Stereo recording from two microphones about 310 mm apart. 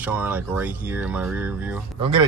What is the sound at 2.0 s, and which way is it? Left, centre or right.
Speech, centre.